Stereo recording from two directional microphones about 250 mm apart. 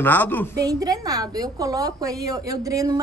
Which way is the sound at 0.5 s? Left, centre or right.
Centre.